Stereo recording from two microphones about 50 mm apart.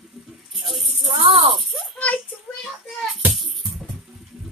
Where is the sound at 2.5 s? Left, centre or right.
Left.